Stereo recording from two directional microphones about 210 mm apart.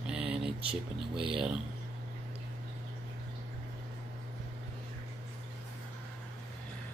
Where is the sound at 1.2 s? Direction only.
25° right (ahead or behind).